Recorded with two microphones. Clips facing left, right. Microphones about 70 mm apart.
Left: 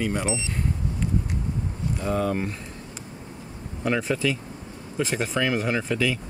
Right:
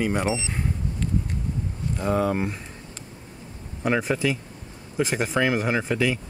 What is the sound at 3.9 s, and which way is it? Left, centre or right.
Speech, centre.